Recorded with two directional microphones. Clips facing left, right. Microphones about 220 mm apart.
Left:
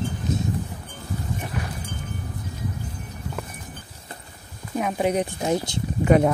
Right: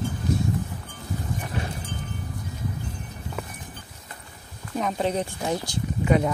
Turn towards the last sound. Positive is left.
turn(degrees=50)  # may be behind; listen again after turning